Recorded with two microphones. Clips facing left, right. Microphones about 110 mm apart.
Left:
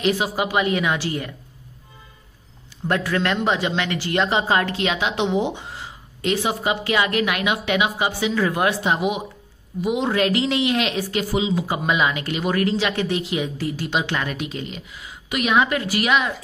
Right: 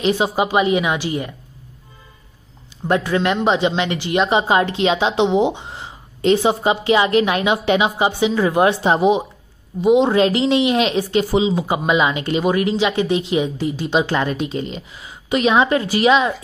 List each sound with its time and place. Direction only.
0.0 s a woman's voice: 25° right (ahead or behind)
2.9 s a woman's voice: 20° right (ahead or behind)